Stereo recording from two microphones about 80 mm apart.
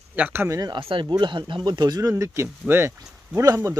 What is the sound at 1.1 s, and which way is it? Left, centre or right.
Speech, right.